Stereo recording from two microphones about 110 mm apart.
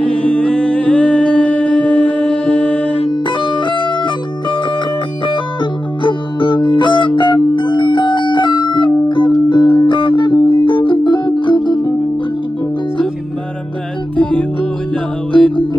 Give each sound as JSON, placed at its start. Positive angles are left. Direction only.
{"t": 0.1, "sound": "music", "side_deg": 10}
{"t": 3.0, "sound": "music", "side_deg": 45}
{"t": 14.1, "sound": "music", "side_deg": 10}